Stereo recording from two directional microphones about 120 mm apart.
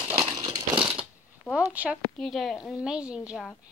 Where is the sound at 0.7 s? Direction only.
10° right (ahead or behind).